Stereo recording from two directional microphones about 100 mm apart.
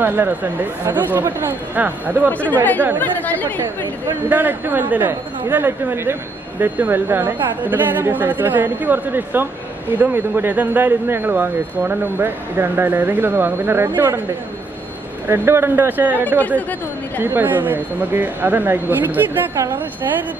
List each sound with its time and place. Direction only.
0.0 s speech: 20° right (ahead or behind)
2.3 s speech: 15° left (ahead or behind)
4.3 s speech: 20° right (ahead or behind)
15.2 s speech: 25° right (ahead or behind)
16.3 s speech: 15° left (ahead or behind)
17.2 s speech: 20° right (ahead or behind)
19.5 s a woman's voice: 30° right (ahead or behind)